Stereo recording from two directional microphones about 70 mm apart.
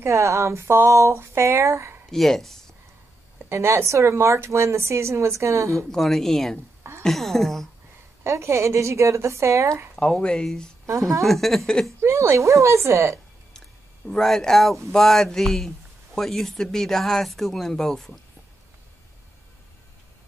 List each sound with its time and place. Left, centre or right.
0.0 s a woman's voice: right
2.0 s speech: centre
3.4 s a woman's voice: right
5.9 s speech: centre
8.2 s a woman's voice: right
9.9 s speech: centre
10.9 s a woman's voice: right
11.2 s speech: centre
12.0 s a woman's voice: right
14.0 s speech: centre